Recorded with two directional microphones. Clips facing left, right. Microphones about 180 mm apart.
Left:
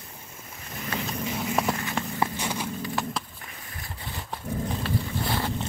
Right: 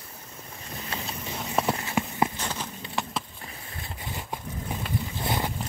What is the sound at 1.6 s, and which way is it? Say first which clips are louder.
Clip-clop: right 1 dB; 25° right (ahead or behind).